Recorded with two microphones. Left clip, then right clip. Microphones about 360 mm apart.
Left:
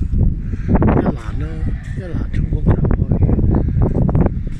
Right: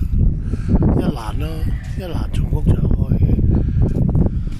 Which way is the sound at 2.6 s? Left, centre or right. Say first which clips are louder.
Left 4 dB; left.